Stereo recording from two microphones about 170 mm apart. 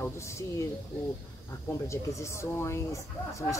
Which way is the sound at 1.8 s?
15° left (ahead or behind).